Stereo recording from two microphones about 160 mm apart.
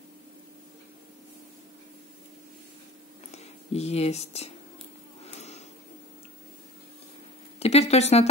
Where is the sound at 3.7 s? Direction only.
40° left (ahead or behind).